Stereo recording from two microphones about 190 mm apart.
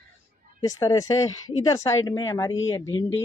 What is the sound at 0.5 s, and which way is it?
A woman's voice, 20° left (ahead or behind).